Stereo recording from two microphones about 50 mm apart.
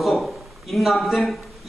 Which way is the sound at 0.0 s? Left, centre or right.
Centre.